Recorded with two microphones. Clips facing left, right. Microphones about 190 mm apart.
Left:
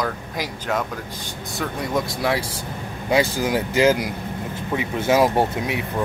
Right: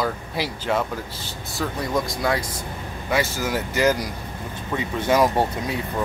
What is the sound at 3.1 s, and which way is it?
Speech, 15° left (ahead or behind).